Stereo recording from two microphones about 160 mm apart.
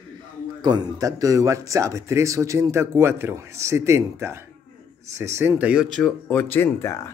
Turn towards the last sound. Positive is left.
turn(degrees=15)  # may be behind; listen again after turning